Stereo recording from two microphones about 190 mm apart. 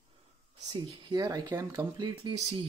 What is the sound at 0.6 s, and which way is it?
Speech, 25° right (ahead or behind).